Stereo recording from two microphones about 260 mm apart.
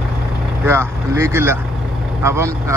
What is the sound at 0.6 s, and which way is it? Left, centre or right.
Speech, centre.